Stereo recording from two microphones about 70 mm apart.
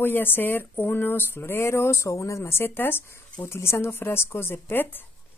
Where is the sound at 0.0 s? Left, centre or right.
Left.